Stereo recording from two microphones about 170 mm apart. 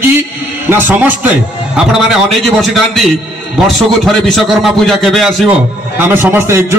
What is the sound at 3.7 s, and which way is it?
A man's voice, centre (ahead or behind).